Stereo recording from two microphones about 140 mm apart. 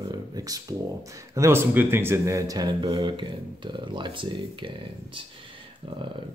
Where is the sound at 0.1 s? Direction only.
25° right (ahead or behind).